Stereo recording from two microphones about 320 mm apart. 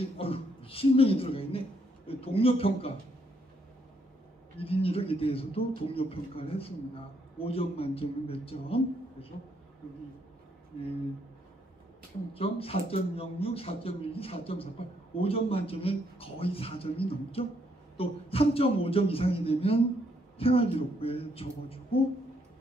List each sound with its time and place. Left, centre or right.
0.0 s a man's voice: centre
4.6 s a man's voice: centre
12.4 s a man's voice: centre